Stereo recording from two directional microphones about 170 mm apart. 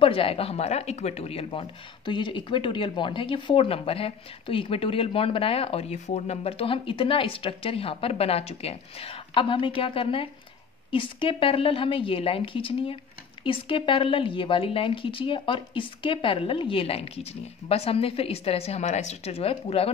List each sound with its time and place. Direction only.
0.0 s speech: 35° left (ahead or behind)